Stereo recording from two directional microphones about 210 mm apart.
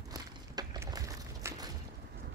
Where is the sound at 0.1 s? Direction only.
20° right (ahead or behind).